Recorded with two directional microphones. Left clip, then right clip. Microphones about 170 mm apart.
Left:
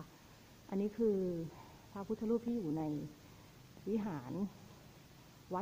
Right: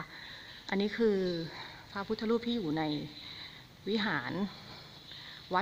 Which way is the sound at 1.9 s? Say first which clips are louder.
Right 5 dB; 10° right (ahead or behind).